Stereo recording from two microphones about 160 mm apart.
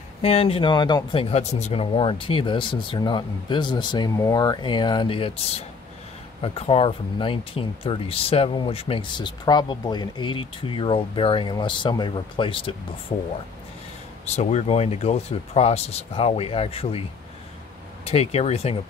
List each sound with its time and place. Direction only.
0.2 s speech: 40° left (ahead or behind)
18.0 s speech: 40° left (ahead or behind)